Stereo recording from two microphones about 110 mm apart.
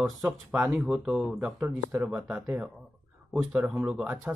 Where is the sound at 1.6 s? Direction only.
20° right (ahead or behind).